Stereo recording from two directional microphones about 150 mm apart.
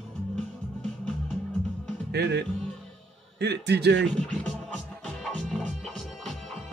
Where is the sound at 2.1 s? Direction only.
90° right.